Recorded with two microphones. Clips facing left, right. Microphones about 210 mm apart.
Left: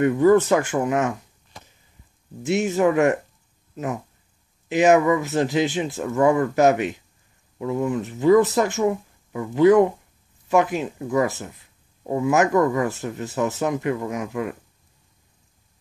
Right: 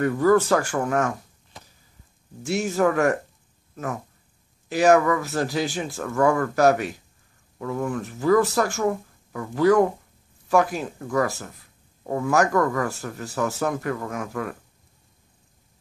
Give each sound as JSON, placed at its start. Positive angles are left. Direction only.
{"t": 0.0, "sound": "speech", "side_deg": 20}
{"t": 2.4, "sound": "speech", "side_deg": 20}
{"t": 11.0, "sound": "speech", "side_deg": 15}